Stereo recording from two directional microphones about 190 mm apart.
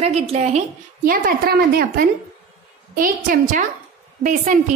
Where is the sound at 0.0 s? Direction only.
35° right (ahead or behind).